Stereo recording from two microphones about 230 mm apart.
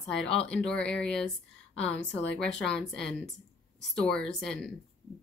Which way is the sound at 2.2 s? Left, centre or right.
Left.